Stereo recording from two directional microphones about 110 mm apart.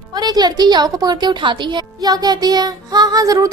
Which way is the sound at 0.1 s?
35° right (ahead or behind).